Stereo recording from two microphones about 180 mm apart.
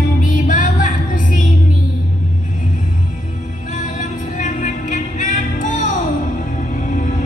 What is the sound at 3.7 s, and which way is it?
Music, 45° left (ahead or behind).